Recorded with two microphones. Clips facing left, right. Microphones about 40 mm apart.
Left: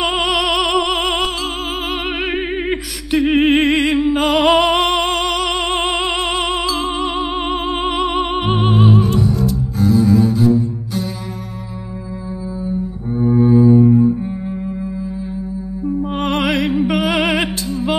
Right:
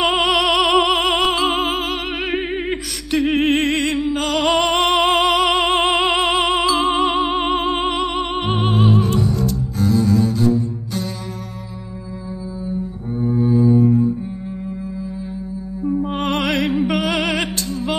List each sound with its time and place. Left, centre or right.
0.0 s music: centre
2.3 s music: centre
13.2 s double bass: left
16.0 s music: centre